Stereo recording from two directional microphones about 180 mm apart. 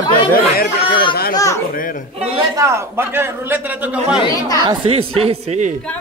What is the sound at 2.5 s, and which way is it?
A man's voice, 15° right (ahead or behind).